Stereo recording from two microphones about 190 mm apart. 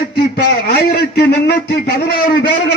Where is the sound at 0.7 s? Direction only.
55° left (ahead or behind).